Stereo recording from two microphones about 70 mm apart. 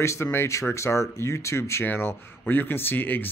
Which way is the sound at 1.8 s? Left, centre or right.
Left.